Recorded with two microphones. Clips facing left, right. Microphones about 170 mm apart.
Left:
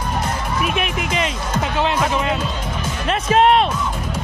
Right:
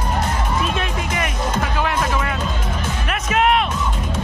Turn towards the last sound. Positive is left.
turn(degrees=30)  # may be behind; listen again after turning